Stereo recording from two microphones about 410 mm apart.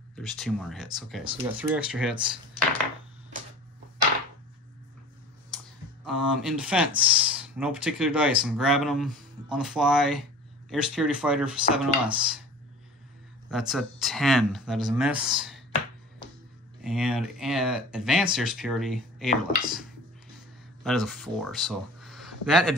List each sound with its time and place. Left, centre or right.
0.1 s speech: centre
6.0 s speech: centre
13.5 s speech: centre
16.8 s speech: centre
20.8 s speech: centre